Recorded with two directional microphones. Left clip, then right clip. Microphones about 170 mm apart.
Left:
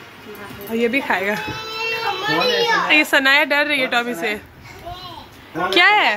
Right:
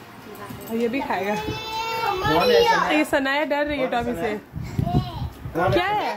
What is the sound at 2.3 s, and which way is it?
Speech, 70° right (ahead or behind).